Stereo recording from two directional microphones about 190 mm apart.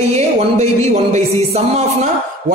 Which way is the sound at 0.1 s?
35° right (ahead or behind).